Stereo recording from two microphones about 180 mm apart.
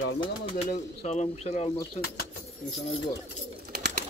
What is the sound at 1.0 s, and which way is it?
Speech, 40° left (ahead or behind).